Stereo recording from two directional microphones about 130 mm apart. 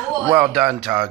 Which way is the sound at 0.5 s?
Centre (ahead or behind).